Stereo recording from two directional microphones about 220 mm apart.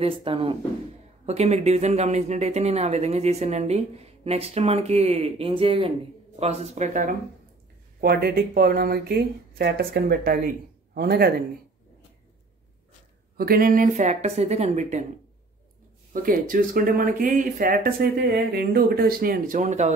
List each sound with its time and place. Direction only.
0.0 s speech: 25° right (ahead or behind); by 11.4 s 45° right (ahead or behind)
13.4 s speech: 40° right (ahead or behind)
16.1 s speech: 40° right (ahead or behind)